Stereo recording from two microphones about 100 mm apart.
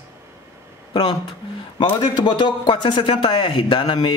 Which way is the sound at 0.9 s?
65° left (ahead or behind).